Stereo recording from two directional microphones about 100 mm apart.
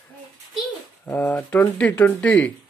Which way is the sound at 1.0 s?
20° left (ahead or behind).